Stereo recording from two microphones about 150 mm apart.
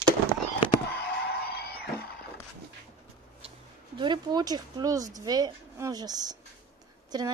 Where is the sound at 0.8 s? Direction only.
90° left.